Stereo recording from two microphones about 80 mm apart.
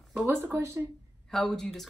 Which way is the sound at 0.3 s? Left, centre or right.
Right.